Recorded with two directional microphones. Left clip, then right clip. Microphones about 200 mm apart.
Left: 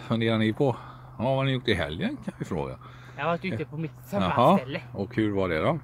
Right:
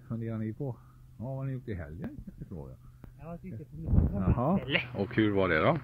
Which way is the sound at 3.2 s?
55° left (ahead or behind).